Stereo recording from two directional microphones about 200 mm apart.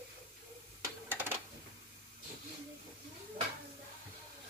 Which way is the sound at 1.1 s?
10° right (ahead or behind).